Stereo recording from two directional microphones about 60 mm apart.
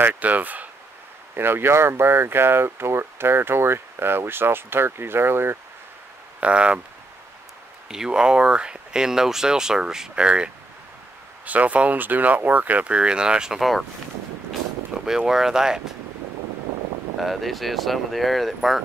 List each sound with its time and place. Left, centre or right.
0.0 s speech: right
1.3 s speech: right
6.4 s speech: centre
7.9 s speech: centre
15.0 s speech: centre
17.2 s speech: centre